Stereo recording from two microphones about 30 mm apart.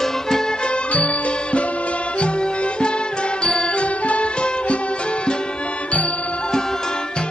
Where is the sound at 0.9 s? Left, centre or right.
Left.